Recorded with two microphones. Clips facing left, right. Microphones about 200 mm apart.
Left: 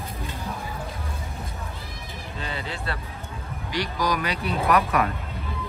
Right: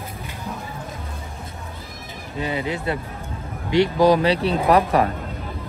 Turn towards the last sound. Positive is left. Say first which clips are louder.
# right 5 dB
turn(degrees=-30)  # may be behind; listen again after turning